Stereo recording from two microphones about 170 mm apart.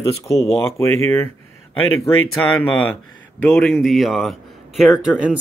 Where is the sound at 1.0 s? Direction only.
10° left (ahead or behind).